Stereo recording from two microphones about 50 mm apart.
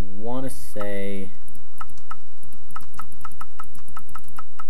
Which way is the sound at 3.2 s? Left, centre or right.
Left.